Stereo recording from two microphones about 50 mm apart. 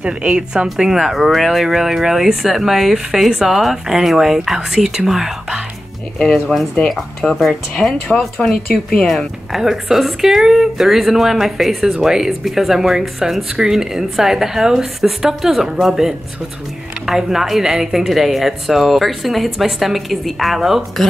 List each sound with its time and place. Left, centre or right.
0.0 s a woman's voice: centre
6.1 s speech: centre
7.7 s speech: centre
9.0 s a woman's voice: centre